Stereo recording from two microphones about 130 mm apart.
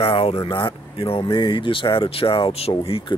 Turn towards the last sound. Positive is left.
turn(degrees=45)  # may be behind; listen again after turning